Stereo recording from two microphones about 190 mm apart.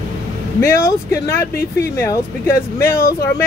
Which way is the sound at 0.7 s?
15° left (ahead or behind).